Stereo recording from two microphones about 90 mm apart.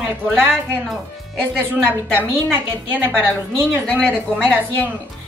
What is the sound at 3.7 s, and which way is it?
Speech, 15° left (ahead or behind).